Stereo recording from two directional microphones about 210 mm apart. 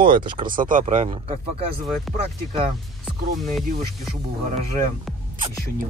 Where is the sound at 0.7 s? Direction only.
35° right (ahead or behind).